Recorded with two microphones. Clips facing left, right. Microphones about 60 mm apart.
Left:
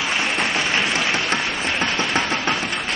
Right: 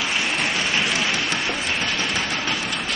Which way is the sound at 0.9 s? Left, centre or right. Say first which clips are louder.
Left 2 dB; left.